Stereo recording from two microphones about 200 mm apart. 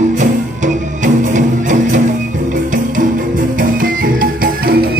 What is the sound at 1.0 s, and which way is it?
Music, 40° right (ahead or behind).